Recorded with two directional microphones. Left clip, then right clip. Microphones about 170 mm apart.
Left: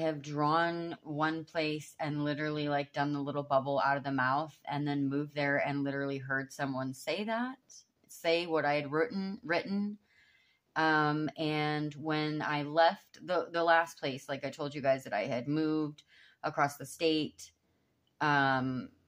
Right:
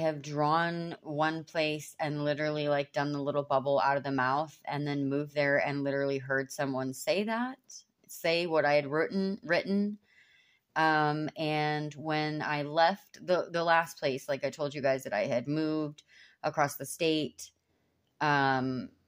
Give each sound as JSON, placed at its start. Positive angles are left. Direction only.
{"t": 0.0, "sound": "speech", "side_deg": -30}